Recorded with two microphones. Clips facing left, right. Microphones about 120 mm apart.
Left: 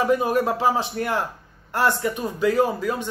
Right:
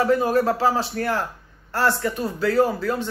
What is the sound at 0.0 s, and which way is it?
Speech, 15° left (ahead or behind).